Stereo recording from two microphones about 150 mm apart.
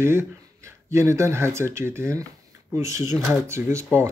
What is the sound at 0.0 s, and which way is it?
Speech, 15° right (ahead or behind).